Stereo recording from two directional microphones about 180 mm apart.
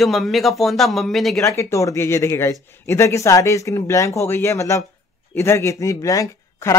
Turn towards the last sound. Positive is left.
turn(degrees=15)  # may be behind; listen again after turning